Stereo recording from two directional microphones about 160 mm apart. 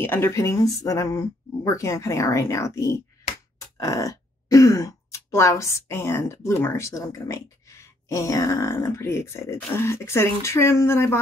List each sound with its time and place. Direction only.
0.0 s speech: 15° left (ahead or behind)